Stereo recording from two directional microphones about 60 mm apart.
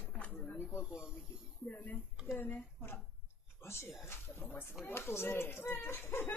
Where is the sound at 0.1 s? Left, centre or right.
Left.